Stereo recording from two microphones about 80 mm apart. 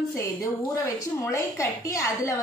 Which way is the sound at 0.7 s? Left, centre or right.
Left.